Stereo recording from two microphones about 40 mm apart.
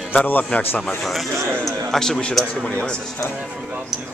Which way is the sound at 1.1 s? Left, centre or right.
Centre.